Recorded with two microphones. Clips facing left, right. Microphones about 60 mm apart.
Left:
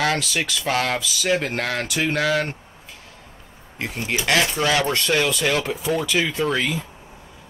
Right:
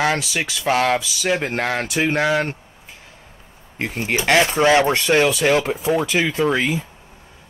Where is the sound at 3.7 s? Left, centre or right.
Right.